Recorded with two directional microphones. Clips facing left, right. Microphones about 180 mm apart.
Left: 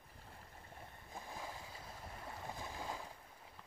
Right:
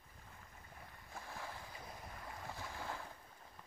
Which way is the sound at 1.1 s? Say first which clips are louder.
Left 1 dB; 15° left (ahead or behind).